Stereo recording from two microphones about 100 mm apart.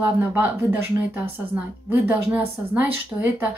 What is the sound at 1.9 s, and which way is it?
A woman's voice, 20° right (ahead or behind).